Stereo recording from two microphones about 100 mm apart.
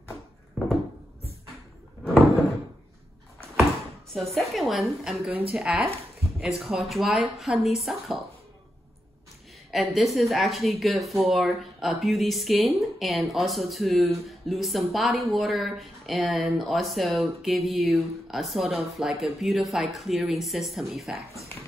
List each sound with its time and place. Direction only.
4.1 s a woman's voice: 5° left (ahead or behind)
9.7 s a woman's voice: centre (ahead or behind)
21.3 s speech: 30° left (ahead or behind)